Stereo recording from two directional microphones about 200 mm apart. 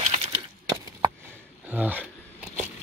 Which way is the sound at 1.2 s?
10° right (ahead or behind).